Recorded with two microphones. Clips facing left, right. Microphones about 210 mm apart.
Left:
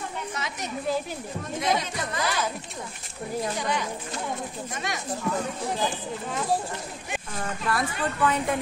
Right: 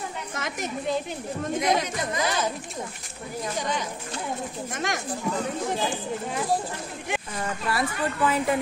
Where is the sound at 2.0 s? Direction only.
20° right (ahead or behind).